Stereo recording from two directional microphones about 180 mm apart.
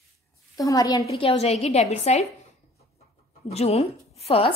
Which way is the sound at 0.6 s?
20° left (ahead or behind).